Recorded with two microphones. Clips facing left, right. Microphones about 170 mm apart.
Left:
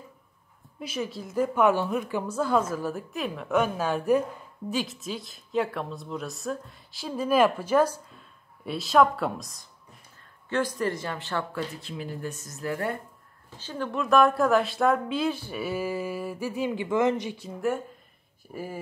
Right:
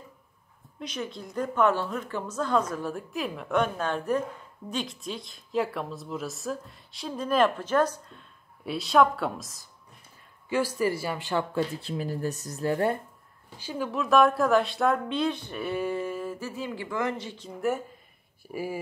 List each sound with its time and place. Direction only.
0.7 s a woman's voice: 5° left (ahead or behind); by 11.4 s 15° right (ahead or behind)
11.5 s speech: 30° right (ahead or behind)
13.6 s speech: 10° right (ahead or behind); by 17.5 s 15° left (ahead or behind)
17.6 s speech: centre (ahead or behind)